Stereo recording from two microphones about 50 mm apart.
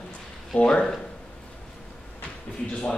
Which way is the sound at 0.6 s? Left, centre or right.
Centre.